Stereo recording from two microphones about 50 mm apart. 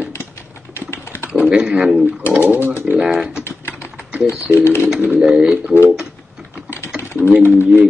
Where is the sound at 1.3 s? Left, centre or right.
Centre.